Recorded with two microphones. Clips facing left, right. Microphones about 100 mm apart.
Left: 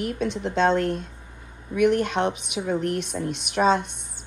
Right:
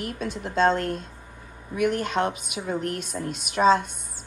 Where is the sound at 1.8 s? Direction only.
45° right (ahead or behind).